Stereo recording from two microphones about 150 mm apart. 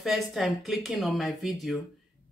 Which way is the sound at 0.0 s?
Centre (ahead or behind).